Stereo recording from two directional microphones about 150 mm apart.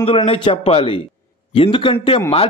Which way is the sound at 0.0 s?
40° left (ahead or behind).